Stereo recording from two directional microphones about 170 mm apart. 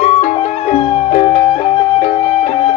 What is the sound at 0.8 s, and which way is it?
Music, 30° left (ahead or behind).